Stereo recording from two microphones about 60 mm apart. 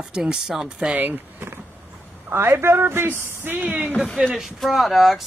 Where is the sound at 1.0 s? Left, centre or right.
Right.